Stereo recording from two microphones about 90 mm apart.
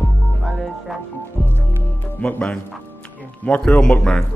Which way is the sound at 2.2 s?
10° left (ahead or behind).